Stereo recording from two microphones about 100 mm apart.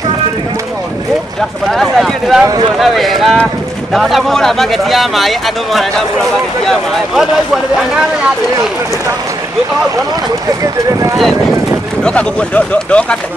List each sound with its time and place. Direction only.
1.7 s speech: 5° left (ahead or behind)
10.6 s speech: 30° right (ahead or behind)
12.0 s speech: 10° left (ahead or behind)